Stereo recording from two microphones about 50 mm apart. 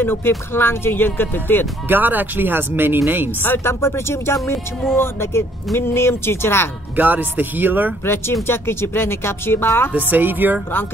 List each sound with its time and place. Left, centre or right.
0.0 s speech: left
1.9 s speech: right
3.4 s speech: left
3.8 s speech: left
4.9 s speech: left
7.0 s speech: right
8.0 s speech: left
9.9 s speech: right